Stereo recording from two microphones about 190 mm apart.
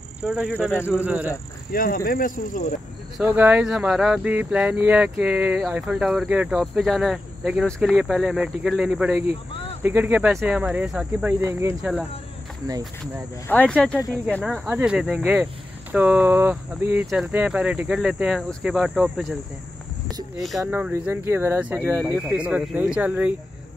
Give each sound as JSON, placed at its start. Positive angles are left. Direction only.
{"t": 0.2, "sound": "speech", "side_deg": -5}
{"t": 1.7, "sound": "speech", "side_deg": 50}
{"t": 3.2, "sound": "speech", "side_deg": -10}
{"t": 9.3, "sound": "cricket", "side_deg": 30}
{"t": 9.8, "sound": "speech", "side_deg": -10}
{"t": 13.0, "sound": "speech", "side_deg": 5}
{"t": 20.1, "sound": "a sound", "side_deg": -20}
{"t": 20.6, "sound": "speech", "side_deg": -10}